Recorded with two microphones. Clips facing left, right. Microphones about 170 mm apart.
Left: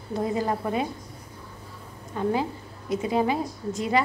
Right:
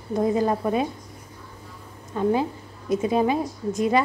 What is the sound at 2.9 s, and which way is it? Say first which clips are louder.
A woman's voice: right 3 dB; 20° right (ahead or behind).